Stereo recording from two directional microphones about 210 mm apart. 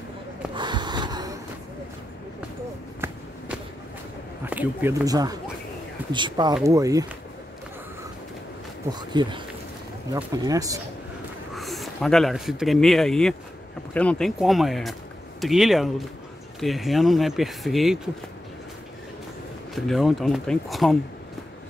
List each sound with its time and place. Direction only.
0.6 s gasp: 20° right (ahead or behind)
3.0 s a sound: 10° right (ahead or behind)
4.5 s speech: 10° right (ahead or behind)
8.9 s speech: 20° right (ahead or behind)
11.5 s speech: centre (ahead or behind)
19.7 s speech: centre (ahead or behind)